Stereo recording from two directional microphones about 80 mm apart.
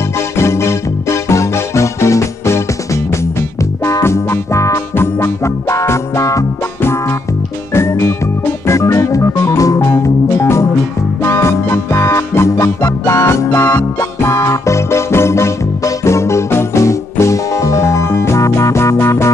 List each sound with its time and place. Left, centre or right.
0.4 s music: left
8.6 s organ: left
11.2 s music: left